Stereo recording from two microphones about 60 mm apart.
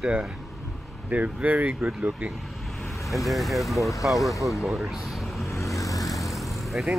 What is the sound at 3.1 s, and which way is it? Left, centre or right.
Speech, centre.